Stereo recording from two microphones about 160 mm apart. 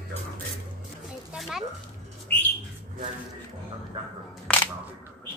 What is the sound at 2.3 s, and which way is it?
Bird, 10° left (ahead or behind).